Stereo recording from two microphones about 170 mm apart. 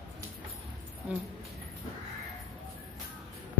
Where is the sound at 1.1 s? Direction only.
10° right (ahead or behind).